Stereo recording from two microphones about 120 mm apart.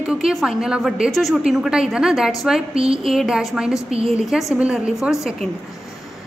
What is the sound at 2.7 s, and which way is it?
Speech, 55° right (ahead or behind).